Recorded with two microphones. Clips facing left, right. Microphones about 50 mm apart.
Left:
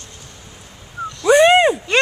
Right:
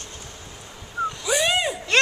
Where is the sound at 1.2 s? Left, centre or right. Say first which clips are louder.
Left 13 dB; left.